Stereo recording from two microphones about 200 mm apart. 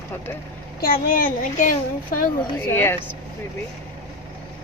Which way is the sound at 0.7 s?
50° left (ahead or behind).